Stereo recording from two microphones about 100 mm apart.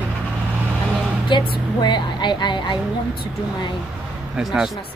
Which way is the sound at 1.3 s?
50° left (ahead or behind).